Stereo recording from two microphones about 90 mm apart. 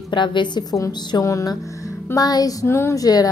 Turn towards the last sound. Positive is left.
turn(degrees=45)  # may be behind; listen again after turning